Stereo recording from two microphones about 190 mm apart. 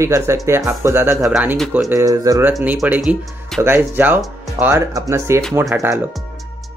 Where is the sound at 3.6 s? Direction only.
10° right (ahead or behind).